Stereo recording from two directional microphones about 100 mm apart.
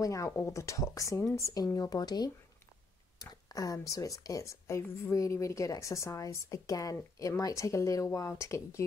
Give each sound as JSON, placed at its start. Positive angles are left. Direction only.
{"t": 0.0, "sound": "speech", "side_deg": 30}